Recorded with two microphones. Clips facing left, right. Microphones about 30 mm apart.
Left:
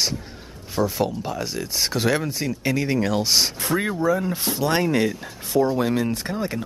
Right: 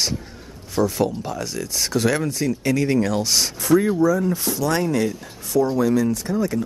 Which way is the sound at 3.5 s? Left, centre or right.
Left.